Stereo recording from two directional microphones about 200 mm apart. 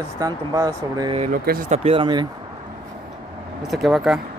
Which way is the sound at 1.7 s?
30° right (ahead or behind).